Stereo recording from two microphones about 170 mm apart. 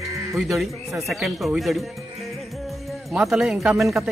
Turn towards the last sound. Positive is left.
turn(degrees=0)  # may be behind; listen again after turning